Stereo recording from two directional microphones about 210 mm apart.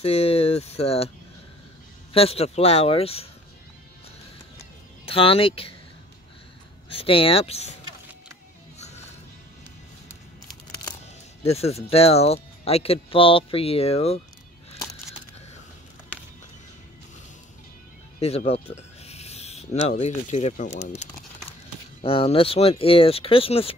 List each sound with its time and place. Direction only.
0.0 s speech: 30° left (ahead or behind)
2.1 s speech: 30° left (ahead or behind)
5.0 s speech: 25° left (ahead or behind)
6.9 s speech: 25° left (ahead or behind)
8.7 s music: 30° left (ahead or behind)
11.4 s speech: 30° left (ahead or behind)
16.1 s music: 5° left (ahead or behind)
18.5 s speech: 30° left (ahead or behind)